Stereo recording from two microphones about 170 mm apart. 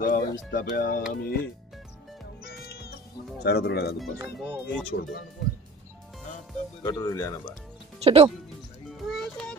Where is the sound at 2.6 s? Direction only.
70° left (ahead or behind).